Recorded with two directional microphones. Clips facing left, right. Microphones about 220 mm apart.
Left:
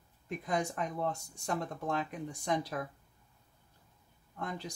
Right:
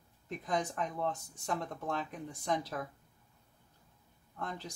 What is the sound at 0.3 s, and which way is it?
Speech, 10° left (ahead or behind).